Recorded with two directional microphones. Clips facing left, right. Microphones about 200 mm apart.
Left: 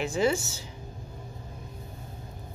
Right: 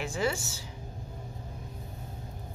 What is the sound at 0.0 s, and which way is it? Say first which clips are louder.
Speech: left 5 dB; 20° left (ahead or behind).